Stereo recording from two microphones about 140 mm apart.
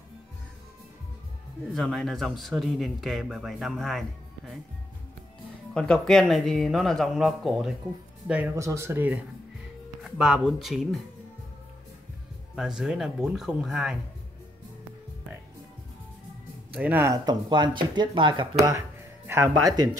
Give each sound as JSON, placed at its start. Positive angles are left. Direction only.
{"t": 1.7, "sound": "speech", "side_deg": 0}
{"t": 5.8, "sound": "speech", "side_deg": 5}
{"t": 8.5, "sound": "speech", "side_deg": -20}
{"t": 12.5, "sound": "speech", "side_deg": -5}
{"t": 16.7, "sound": "speech", "side_deg": -10}
{"t": 19.2, "sound": "speech", "side_deg": -15}
{"t": 19.7, "sound": "speech", "side_deg": -30}